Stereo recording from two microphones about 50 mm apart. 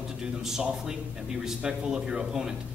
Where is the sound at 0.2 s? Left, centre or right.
Centre.